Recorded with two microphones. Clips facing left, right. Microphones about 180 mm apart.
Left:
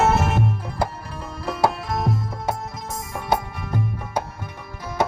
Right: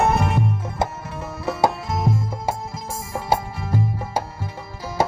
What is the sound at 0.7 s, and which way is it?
Music, 25° right (ahead or behind).